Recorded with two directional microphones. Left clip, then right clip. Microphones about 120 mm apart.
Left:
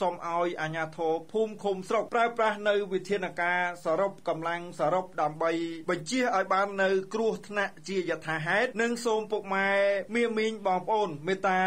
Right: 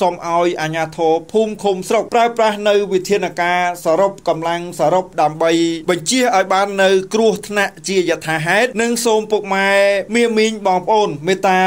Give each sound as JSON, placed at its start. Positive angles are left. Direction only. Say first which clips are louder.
{"t": 0.0, "sound": "speech", "louder": "right 13 dB", "side_deg": -30}